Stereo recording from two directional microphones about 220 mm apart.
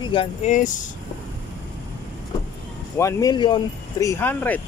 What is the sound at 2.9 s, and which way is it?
Speech, 15° left (ahead or behind).